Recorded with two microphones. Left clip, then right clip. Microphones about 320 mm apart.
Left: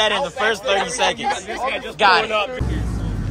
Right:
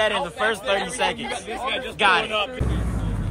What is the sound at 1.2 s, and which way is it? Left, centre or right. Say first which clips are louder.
Speech: left 6 dB; left.